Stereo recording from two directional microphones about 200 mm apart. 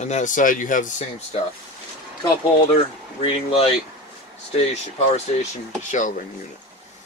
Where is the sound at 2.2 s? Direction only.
20° left (ahead or behind).